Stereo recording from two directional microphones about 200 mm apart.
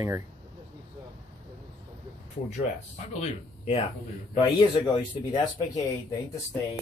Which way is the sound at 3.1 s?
30° left (ahead or behind).